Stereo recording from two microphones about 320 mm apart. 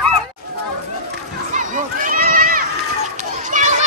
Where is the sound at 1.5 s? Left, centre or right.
Right.